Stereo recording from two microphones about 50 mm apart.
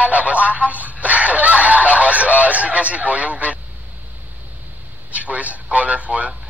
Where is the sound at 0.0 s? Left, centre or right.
Right.